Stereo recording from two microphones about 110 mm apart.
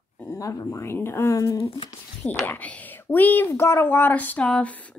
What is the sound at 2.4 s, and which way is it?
Speech, 15° left (ahead or behind).